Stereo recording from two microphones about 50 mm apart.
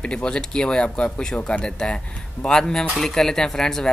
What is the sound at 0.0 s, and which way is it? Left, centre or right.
Speech, centre.